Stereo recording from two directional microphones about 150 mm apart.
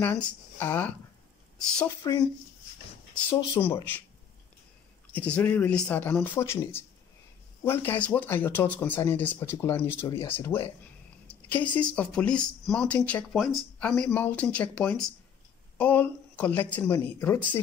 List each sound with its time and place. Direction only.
0.0 s speech: 10° left (ahead or behind)
2.0 s speech: 25° left (ahead or behind)
3.5 s speech: 15° left (ahead or behind)
5.1 s speech: 10° left (ahead or behind)